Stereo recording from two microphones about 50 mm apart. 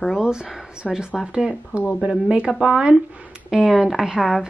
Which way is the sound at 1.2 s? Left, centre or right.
Centre.